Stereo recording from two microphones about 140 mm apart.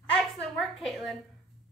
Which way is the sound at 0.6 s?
Centre (ahead or behind).